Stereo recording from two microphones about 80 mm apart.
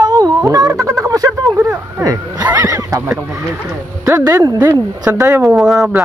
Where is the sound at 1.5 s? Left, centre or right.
Right.